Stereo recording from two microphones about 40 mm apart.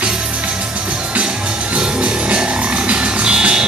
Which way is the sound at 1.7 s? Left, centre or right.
Right.